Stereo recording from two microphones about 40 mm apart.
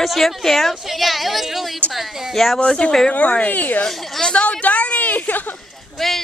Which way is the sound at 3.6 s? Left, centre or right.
Left.